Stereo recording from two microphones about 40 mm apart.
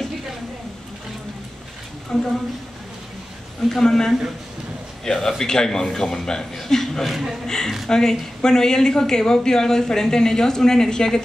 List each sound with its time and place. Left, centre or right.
2.1 s speech: centre
3.6 s speech: centre
5.1 s speech: left; by 7.3 s centre
7.4 s speech: centre